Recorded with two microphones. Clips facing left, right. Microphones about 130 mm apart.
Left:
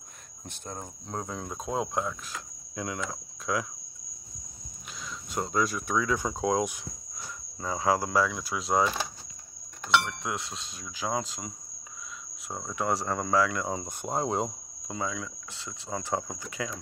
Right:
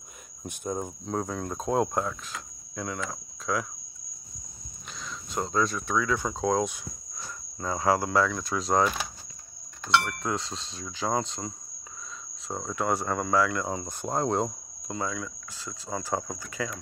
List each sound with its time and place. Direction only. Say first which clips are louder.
0.5 s speech: right 8 dB; 10° right (ahead or behind)
1.0 s cricket: right 3 dB; centre (ahead or behind)
2.7 s cricket: even; 15° left (ahead or behind)
4.9 s cricket: right 1 dB; 5° left (ahead or behind)
10.0 s cricket: right 3 dB; 5° left (ahead or behind)
12.4 s speech: right 4 dB; 10° left (ahead or behind)
12.7 s speech: right 1 dB; 20° left (ahead or behind)
13.3 s cricket: even; 20° left (ahead or behind)
14.0 s cricket: right 2 dB; 5° left (ahead or behind)